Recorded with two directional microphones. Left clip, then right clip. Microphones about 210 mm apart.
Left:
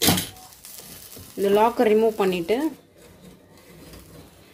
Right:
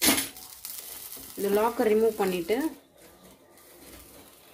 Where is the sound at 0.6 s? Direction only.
Centre (ahead or behind).